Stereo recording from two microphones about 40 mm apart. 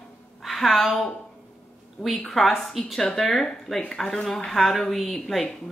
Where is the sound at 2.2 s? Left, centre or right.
Centre.